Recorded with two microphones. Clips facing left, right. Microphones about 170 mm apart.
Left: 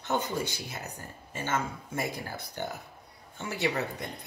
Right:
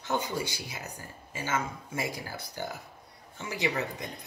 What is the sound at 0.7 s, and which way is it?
Speech, 10° right (ahead or behind).